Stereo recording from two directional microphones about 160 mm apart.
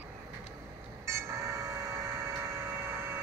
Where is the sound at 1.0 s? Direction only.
15° right (ahead or behind).